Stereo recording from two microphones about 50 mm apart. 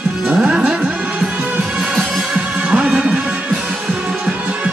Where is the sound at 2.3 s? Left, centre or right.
Centre.